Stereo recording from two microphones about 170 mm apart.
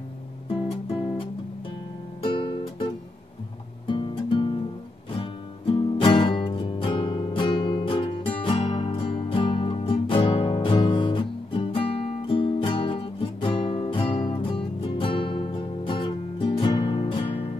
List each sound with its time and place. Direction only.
0.8 s music: 35° left (ahead or behind)
2.3 s music: 30° left (ahead or behind)